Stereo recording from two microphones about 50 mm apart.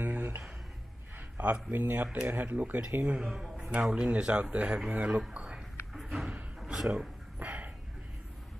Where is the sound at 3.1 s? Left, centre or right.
Centre.